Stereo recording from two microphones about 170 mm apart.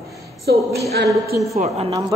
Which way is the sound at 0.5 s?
80° right.